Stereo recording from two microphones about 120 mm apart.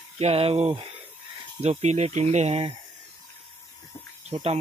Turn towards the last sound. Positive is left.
turn(degrees=-70)  # may be behind; listen again after turning